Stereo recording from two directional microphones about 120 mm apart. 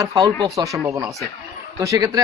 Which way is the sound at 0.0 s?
30° right (ahead or behind).